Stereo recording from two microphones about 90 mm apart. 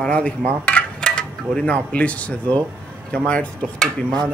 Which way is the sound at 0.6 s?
10° left (ahead or behind).